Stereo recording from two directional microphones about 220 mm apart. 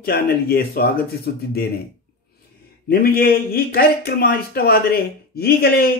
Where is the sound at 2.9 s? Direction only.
45° left (ahead or behind).